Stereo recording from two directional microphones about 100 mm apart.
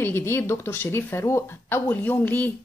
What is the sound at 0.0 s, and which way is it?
A woman's voice, 25° left (ahead or behind).